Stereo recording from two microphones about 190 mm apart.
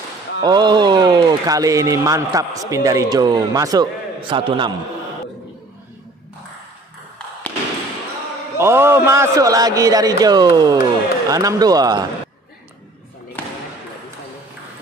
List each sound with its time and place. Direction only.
0.4 s a man's voice: 20° right (ahead or behind)
8.5 s a man's voice: 15° right (ahead or behind)
13.4 s basketball bounce: 10° left (ahead or behind)